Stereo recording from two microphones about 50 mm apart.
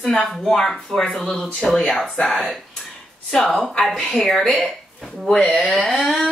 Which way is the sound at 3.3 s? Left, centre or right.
Centre.